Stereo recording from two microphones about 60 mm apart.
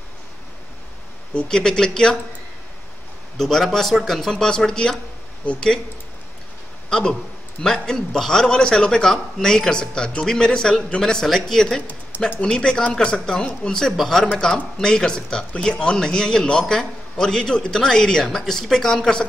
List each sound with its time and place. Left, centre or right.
1.5 s a man's voice: centre
3.3 s speech: centre
6.9 s a man's voice: centre
14.8 s a man's voice: centre